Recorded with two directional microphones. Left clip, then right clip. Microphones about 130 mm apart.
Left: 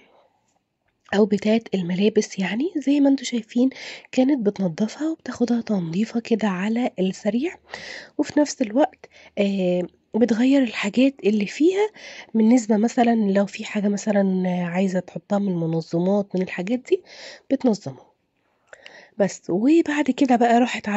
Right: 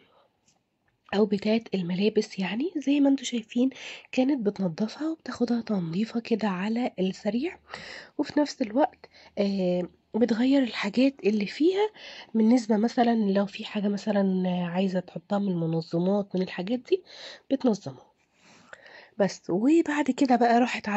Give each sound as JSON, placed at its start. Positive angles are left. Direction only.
{"t": 1.1, "sound": "a woman's voice", "side_deg": 40}
{"t": 17.6, "sound": "speech", "side_deg": 30}
{"t": 18.7, "sound": "a sound", "side_deg": 45}
{"t": 19.5, "sound": "a woman's voice", "side_deg": 40}